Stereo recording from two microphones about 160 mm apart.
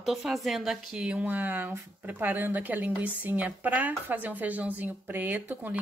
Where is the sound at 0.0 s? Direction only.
Centre (ahead or behind).